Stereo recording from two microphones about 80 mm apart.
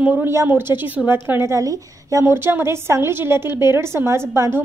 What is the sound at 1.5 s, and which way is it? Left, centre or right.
A woman's voice, right.